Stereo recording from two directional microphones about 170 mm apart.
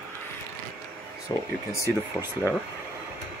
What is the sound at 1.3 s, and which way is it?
Speech, 15° left (ahead or behind).